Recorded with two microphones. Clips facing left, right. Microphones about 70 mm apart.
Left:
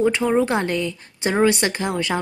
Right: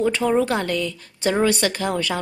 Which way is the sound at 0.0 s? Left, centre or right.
Centre.